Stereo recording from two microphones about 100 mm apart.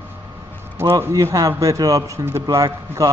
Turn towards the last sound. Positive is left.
turn(degrees=-30)  # may be behind; listen again after turning